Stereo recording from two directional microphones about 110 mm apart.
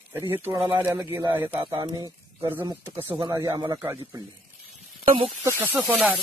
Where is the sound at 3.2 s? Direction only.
35° right (ahead or behind).